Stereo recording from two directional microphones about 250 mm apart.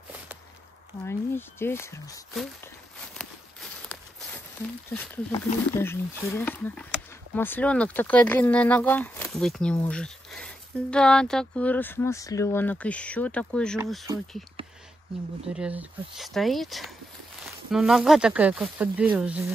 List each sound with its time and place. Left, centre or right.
1.0 s speech: centre
3.2 s walk: centre
4.9 s speech: centre
14.6 s a sound: right
15.4 s speech: centre